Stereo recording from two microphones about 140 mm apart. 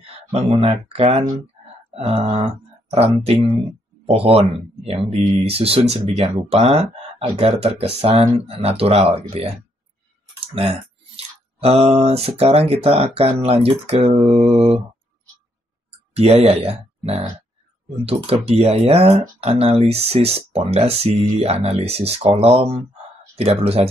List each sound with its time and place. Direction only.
0.3 s speech: 45° right (ahead or behind)
11.1 s speech: 45° right (ahead or behind)
16.2 s speech: 45° right (ahead or behind)